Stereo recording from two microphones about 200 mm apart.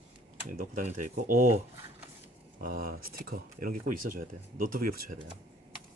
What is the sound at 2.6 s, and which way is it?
Speech, 50° right (ahead or behind).